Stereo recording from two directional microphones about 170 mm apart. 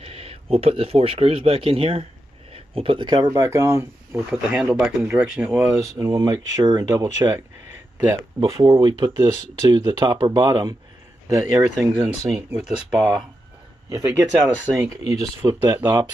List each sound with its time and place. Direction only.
0.0 s speech: 35° right (ahead or behind)
8.5 s speech: 25° right (ahead or behind); by 14.9 s 10° right (ahead or behind)
15.4 s speech: 25° right (ahead or behind)